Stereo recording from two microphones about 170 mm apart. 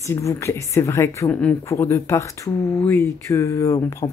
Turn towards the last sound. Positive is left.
turn(degrees=20)  # may be behind; listen again after turning